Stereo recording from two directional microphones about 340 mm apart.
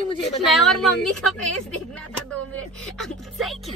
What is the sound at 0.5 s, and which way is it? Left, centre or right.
Speech, centre.